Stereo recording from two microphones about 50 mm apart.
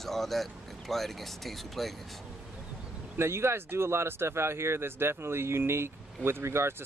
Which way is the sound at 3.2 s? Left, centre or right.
Right.